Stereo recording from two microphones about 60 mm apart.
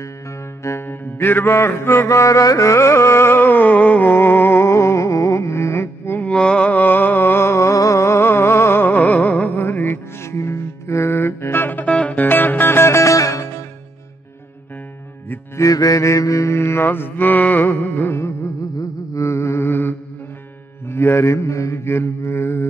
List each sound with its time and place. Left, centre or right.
0.7 s music: left
4.6 s music: left
6.3 s a sound: centre; by 8.8 s left
8.8 s music: left
9.6 s music: left
10.3 s music: left
11.8 s music: left
15.5 s mantra: left
18.8 s mantra: left